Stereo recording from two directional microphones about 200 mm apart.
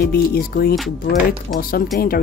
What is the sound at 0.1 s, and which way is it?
Speech, 50° left (ahead or behind).